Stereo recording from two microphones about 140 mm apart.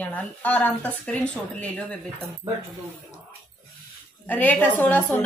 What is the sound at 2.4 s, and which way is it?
Speech, 25° right (ahead or behind).